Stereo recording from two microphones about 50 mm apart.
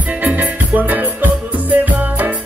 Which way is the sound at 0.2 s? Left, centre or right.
Right.